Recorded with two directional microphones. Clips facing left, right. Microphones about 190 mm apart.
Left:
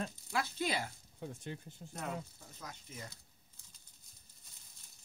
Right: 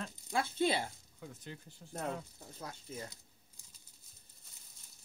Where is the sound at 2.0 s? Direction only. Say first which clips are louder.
Right 3 dB; 30° right (ahead or behind).